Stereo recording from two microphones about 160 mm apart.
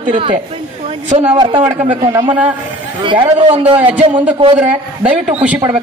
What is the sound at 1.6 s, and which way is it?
Speech, 40° right (ahead or behind).